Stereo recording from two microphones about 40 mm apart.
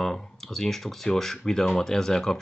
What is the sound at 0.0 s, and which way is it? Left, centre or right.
Speech, centre.